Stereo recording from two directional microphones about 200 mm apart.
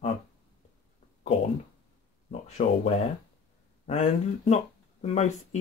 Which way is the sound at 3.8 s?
30° left (ahead or behind).